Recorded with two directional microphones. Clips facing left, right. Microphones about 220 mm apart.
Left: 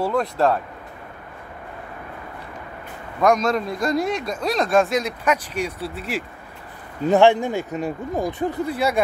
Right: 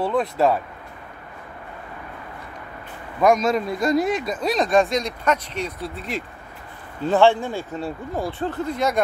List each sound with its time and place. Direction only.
0.0 s speech: centre (ahead or behind)
3.2 s speech: 5° right (ahead or behind)
7.1 s speech: 20° left (ahead or behind)